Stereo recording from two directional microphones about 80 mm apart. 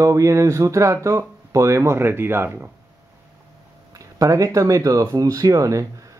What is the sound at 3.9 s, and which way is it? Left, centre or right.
Speech, right.